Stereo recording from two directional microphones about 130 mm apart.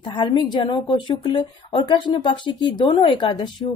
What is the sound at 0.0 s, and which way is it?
A woman's voice, 35° left (ahead or behind).